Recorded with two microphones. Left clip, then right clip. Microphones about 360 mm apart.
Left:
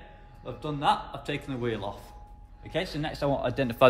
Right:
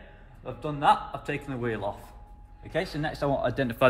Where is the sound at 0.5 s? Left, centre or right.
Centre.